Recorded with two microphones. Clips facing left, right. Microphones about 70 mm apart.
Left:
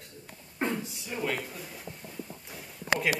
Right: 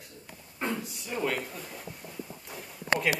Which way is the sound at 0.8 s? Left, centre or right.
Centre.